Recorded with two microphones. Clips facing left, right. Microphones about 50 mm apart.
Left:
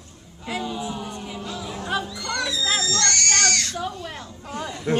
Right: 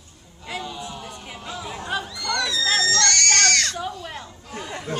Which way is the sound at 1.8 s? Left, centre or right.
Centre.